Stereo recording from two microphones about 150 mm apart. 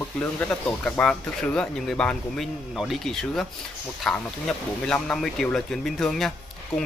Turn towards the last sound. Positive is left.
turn(degrees=5)  # may be behind; listen again after turning